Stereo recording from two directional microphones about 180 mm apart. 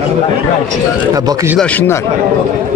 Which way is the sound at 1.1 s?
20° right (ahead or behind).